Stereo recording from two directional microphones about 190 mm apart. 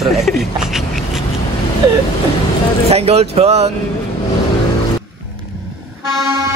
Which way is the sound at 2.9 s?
35° right (ahead or behind).